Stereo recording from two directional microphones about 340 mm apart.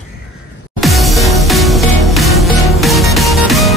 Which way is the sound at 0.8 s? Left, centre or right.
Centre.